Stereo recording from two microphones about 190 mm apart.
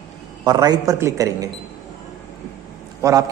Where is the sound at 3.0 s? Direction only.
20° right (ahead or behind).